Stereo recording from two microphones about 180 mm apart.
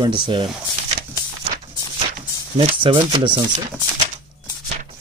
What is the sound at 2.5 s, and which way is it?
Speech, 30° right (ahead or behind).